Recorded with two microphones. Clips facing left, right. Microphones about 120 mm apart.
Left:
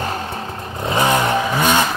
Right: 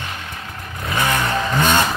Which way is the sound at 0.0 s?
40° left (ahead or behind).